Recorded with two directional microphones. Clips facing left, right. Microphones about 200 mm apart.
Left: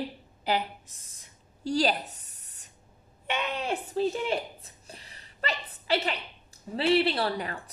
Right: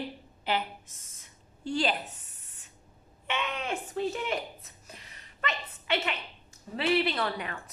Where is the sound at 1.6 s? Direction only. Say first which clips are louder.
Left 3 dB; 40° left (ahead or behind).